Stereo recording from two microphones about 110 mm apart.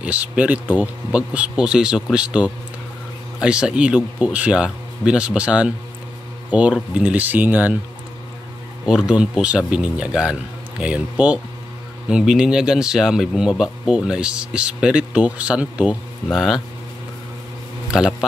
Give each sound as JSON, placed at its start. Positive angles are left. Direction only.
{"t": 0.0, "sound": "speech", "side_deg": -10}
{"t": 8.8, "sound": "speech", "side_deg": -5}
{"t": 17.9, "sound": "speech", "side_deg": -5}